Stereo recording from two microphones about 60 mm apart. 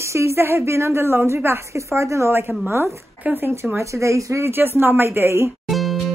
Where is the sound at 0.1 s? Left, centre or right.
Right.